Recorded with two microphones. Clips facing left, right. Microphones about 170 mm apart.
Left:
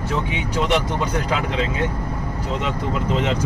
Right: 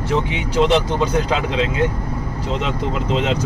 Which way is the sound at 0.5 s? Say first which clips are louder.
Right 5 dB; 25° right (ahead or behind).